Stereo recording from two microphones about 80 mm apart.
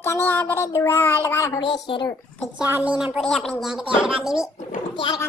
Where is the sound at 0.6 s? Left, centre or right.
Left.